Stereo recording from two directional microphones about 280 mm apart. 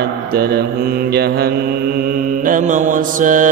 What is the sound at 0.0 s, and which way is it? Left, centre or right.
Mantra, right.